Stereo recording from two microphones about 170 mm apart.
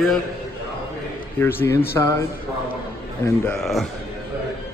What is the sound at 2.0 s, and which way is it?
Speech, 20° left (ahead or behind).